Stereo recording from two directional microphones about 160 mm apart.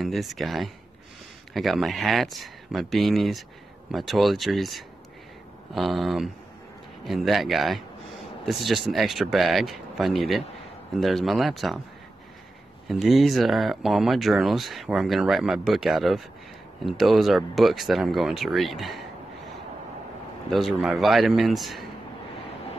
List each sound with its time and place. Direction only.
0.0 s speech: centre (ahead or behind)
12.8 s speech: centre (ahead or behind)
20.4 s speech: centre (ahead or behind)